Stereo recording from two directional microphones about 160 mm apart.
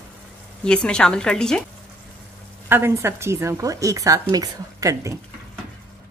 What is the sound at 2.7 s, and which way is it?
A woman's voice, 15° right (ahead or behind).